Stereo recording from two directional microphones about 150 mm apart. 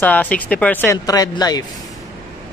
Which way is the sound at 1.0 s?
25° left (ahead or behind).